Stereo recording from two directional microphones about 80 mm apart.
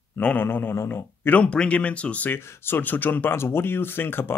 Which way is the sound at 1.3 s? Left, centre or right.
Centre.